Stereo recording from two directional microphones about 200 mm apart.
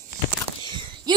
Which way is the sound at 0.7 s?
25° right (ahead or behind).